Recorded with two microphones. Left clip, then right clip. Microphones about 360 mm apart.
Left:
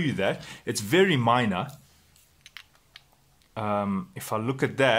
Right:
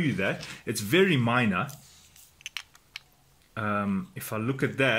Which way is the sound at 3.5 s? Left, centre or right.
Centre.